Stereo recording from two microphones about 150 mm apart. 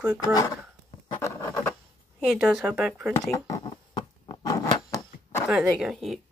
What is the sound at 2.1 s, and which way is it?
Speech, 5° right (ahead or behind).